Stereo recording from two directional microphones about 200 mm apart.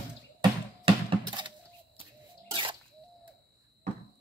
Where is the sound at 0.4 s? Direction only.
25° right (ahead or behind).